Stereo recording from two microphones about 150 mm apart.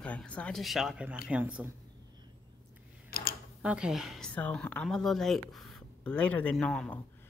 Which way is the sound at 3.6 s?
5° right (ahead or behind).